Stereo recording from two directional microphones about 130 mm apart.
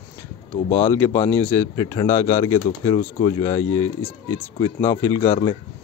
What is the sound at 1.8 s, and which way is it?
Speech, 30° left (ahead or behind).